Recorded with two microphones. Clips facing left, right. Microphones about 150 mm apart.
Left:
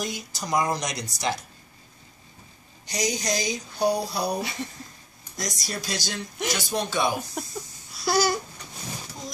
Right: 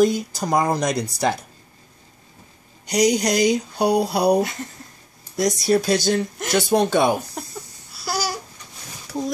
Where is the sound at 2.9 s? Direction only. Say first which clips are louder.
Right 9 dB; 65° right (ahead or behind).